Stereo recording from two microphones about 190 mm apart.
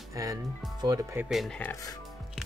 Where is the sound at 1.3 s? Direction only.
Centre (ahead or behind).